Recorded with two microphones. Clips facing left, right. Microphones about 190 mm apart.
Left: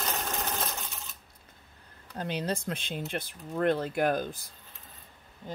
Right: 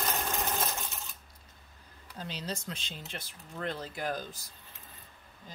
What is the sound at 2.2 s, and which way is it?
Speech, 55° left (ahead or behind).